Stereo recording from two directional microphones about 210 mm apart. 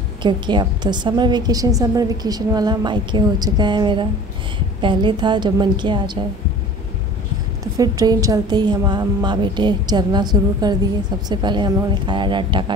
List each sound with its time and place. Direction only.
0.2 s a woman's voice: 20° right (ahead or behind)
7.7 s a woman's voice: 15° right (ahead or behind)